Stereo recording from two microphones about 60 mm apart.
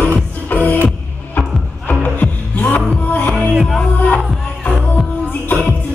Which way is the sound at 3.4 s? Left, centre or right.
Centre.